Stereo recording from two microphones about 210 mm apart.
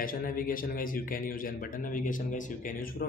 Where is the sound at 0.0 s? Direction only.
40° left (ahead or behind).